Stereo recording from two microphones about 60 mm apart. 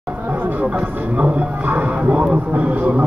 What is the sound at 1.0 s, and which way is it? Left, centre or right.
Speech, right.